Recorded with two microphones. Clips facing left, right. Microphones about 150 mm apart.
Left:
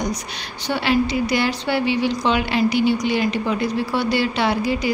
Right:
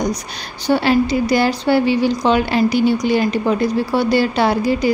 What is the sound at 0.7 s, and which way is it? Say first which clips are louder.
A woman's voice: right 5 dB; 40° right (ahead or behind).